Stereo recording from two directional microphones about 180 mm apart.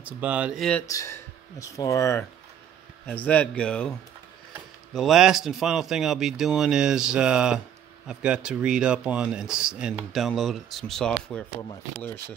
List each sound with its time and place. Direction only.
0.0 s speech: 10° right (ahead or behind)
0.8 s speech: 15° left (ahead or behind)
4.9 s speech: centre (ahead or behind)